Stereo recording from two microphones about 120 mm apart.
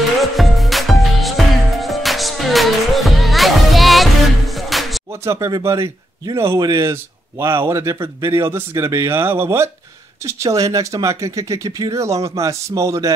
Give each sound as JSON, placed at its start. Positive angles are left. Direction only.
{"t": 0.2, "sound": "music", "side_deg": 0}
{"t": 5.2, "sound": "speech", "side_deg": -25}
{"t": 6.6, "sound": "speech", "side_deg": -35}
{"t": 6.9, "sound": "speech", "side_deg": -20}